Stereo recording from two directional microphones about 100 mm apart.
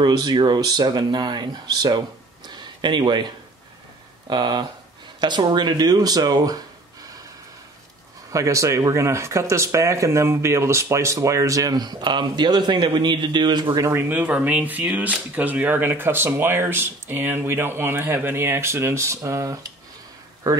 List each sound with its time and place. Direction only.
0.0 s speech: 45° right (ahead or behind)
8.3 s speech: 30° right (ahead or behind)
13.8 s speech: 25° right (ahead or behind)